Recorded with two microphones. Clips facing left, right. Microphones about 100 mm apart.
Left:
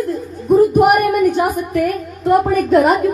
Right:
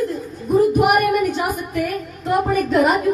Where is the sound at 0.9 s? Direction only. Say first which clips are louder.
Left 3 dB; centre (ahead or behind).